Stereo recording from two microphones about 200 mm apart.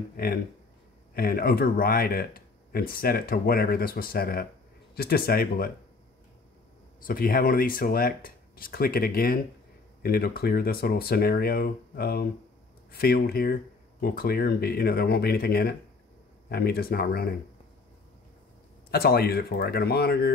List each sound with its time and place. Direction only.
0.2 s speech: 50° left (ahead or behind)
7.1 s speech: 45° left (ahead or behind)
18.9 s speech: 50° left (ahead or behind)